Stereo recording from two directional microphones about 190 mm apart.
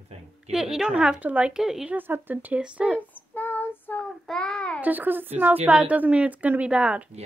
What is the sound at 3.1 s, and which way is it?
Child singing, 10° left (ahead or behind).